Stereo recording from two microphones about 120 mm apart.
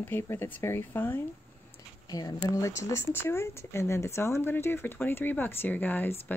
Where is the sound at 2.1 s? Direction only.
30° left (ahead or behind).